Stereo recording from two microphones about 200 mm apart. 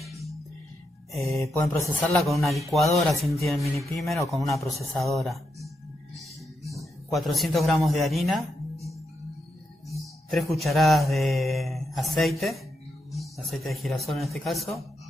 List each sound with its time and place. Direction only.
0.1 s music: centre (ahead or behind)
1.5 s mantra: 10° left (ahead or behind)
2.0 s speech: centre (ahead or behind)
6.1 s music: 15° right (ahead or behind)
7.1 s speech: centre (ahead or behind)
9.8 s speech: centre (ahead or behind)